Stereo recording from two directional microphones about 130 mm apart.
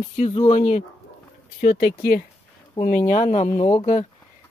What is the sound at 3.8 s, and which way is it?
Speech, 50° left (ahead or behind).